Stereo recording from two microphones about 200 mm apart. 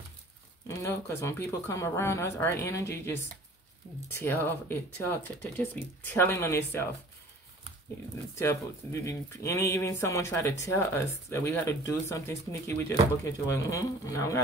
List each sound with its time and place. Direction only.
0.7 s speech: 15° left (ahead or behind)
8.4 s speech: 15° left (ahead or behind)